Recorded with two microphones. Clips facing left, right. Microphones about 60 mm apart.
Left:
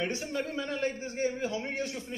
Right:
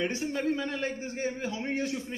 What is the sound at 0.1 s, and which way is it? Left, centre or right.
A man's voice, right.